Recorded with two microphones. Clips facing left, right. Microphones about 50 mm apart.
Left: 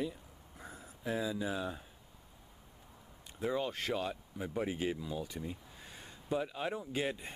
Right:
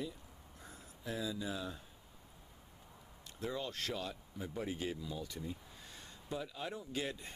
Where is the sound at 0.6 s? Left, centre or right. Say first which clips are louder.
Left 6 dB; centre.